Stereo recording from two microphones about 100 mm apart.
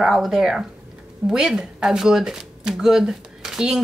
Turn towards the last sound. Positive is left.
turn(degrees=-5)  # may be behind; listen again after turning